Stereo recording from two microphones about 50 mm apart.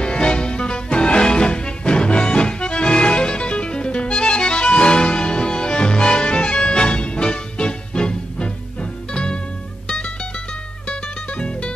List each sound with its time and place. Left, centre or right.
0.0 s music: left
10.9 s music: left